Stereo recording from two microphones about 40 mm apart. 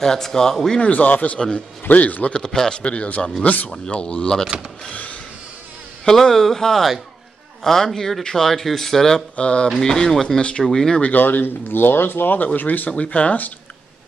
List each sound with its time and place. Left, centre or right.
0.0 s speech: centre
0.8 s speech: left
2.3 s speech: centre
2.8 s speech: left
3.4 s speech: left
3.7 s speech: left
6.0 s speech: centre
9.4 s speech: left
9.8 s speech: centre
10.7 s speech: centre
11.0 s speech: left
12.5 s speech: left
12.9 s speech: left